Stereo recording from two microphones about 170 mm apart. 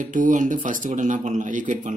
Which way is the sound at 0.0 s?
50° right (ahead or behind).